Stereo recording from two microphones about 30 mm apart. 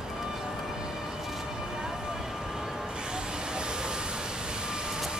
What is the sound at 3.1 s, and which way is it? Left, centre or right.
Vehicle, right.